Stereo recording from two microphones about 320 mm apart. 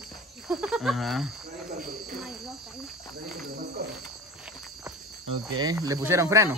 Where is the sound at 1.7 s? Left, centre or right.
Right.